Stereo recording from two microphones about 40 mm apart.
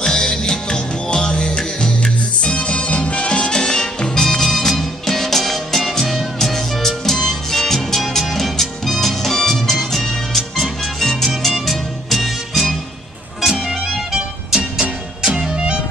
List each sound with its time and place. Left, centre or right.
0.0 s music: centre; by 15.8 s right